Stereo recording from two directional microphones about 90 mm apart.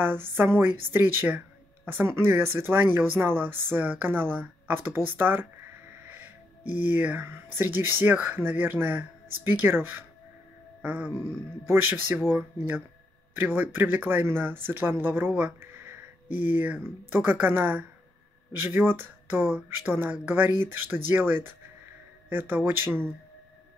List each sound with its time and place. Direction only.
0.0 s speech: 25° right (ahead or behind)
10.8 s a sound: 15° right (ahead or behind)
11.6 s speech: 25° right (ahead or behind)